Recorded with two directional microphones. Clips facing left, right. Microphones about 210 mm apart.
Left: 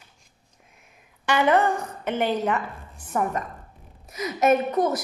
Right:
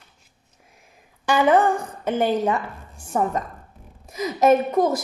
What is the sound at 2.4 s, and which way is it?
A woman's voice, 30° right (ahead or behind).